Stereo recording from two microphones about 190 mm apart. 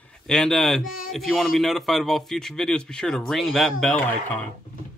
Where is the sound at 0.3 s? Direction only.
5° left (ahead or behind).